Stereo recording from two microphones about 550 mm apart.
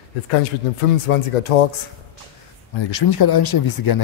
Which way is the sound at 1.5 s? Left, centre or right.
Left.